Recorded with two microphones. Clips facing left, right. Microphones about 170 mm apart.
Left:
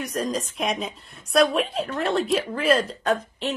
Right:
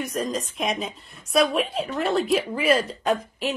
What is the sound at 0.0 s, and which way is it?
A woman's voice, centre (ahead or behind).